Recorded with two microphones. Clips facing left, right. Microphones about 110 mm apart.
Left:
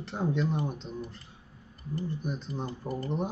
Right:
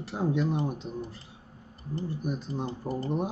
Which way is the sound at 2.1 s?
5° right (ahead or behind).